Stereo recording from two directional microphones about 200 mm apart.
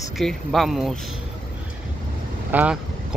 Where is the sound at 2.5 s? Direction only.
10° right (ahead or behind).